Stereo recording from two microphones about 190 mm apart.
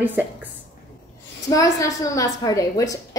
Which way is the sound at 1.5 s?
15° left (ahead or behind).